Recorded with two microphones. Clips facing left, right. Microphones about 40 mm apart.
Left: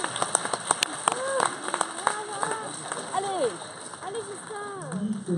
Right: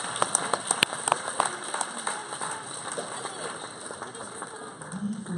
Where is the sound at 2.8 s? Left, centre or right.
Centre.